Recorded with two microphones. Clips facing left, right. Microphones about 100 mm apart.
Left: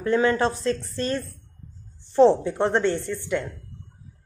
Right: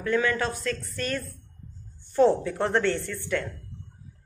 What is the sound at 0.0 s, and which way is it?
A woman's voice, 30° left (ahead or behind).